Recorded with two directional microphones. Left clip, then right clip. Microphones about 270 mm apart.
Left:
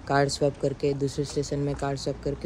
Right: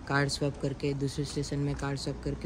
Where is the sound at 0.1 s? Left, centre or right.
Centre.